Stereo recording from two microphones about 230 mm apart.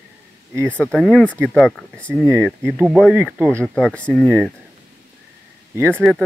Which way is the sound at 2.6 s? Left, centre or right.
Centre.